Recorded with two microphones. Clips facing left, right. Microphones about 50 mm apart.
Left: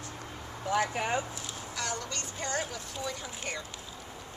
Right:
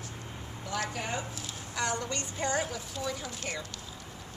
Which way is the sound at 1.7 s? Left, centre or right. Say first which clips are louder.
Right 4 dB; centre.